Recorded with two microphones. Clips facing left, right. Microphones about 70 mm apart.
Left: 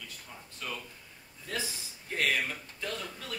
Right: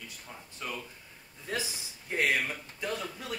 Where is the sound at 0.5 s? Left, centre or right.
Centre.